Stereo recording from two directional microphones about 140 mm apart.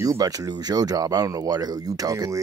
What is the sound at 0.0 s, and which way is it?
Speech, 25° right (ahead or behind).